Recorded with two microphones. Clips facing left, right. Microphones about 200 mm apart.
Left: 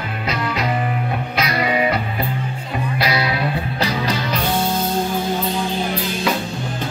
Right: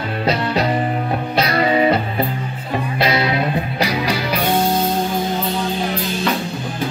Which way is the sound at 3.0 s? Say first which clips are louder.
Right 3 dB; 25° right (ahead or behind).